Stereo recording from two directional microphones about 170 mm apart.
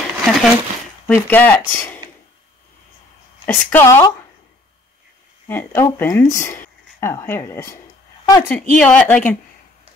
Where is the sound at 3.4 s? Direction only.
15° left (ahead or behind).